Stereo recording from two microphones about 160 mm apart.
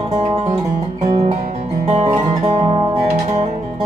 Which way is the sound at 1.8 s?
45° right (ahead or behind).